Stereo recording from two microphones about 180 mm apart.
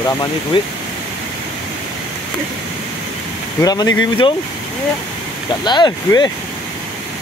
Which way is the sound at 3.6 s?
20° left (ahead or behind).